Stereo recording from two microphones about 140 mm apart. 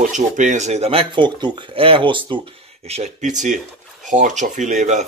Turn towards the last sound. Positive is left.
turn(degrees=-60)  # may be behind; listen again after turning